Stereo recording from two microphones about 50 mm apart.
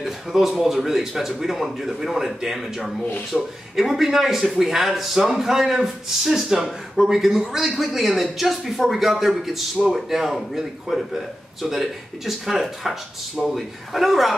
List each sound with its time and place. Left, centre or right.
0.0 s a man's voice: centre